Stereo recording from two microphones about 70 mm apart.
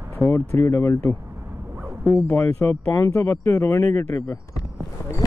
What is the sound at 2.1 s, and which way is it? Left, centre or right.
Speech, left.